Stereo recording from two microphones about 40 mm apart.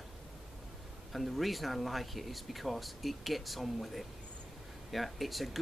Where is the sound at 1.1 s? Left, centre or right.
Centre.